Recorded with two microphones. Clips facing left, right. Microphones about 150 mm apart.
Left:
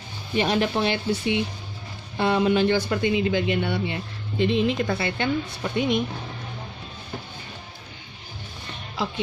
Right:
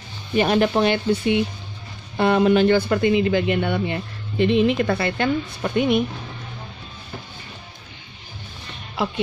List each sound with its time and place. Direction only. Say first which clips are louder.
0.4 s speech: right 5 dB; 55° right (ahead or behind)
8.9 s speech: right 4 dB; 60° right (ahead or behind)